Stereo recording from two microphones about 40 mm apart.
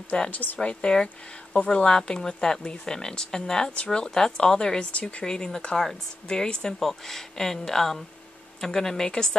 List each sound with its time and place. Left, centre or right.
0.3 s speech: left
0.6 s speech: left
6.8 s speech: centre